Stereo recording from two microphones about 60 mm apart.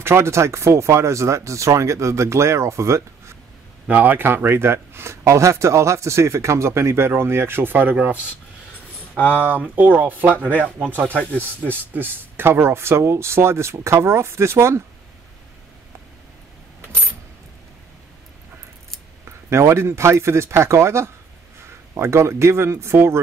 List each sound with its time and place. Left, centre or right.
0.0 s speech: right
3.8 s speech: right
9.1 s speech: left
9.8 s speech: right
11.1 s speech: left
11.6 s speech: right
19.2 s speech: right